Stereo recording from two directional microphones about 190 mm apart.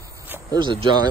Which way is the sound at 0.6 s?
25° right (ahead or behind).